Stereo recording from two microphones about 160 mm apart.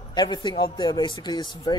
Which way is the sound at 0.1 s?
30° left (ahead or behind).